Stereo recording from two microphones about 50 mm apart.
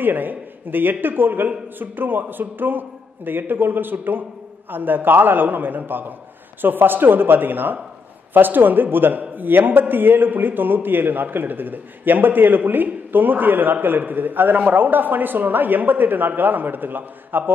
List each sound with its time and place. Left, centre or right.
0.0 s a man's voice: right